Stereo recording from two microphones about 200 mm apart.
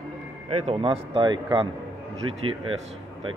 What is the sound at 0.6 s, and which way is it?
Speech, 30° right (ahead or behind).